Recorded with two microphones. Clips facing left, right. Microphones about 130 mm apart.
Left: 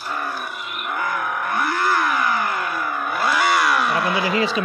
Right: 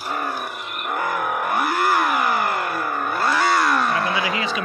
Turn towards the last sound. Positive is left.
turn(degrees=35)  # may be behind; listen again after turning